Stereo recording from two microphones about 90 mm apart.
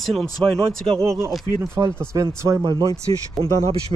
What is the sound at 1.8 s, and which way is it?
Speech, 35° right (ahead or behind).